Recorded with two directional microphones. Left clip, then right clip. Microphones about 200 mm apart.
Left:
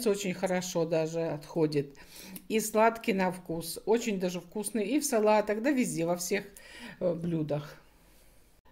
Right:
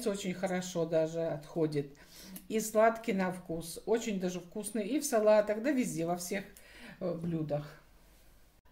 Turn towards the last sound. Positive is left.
turn(degrees=45)  # may be behind; listen again after turning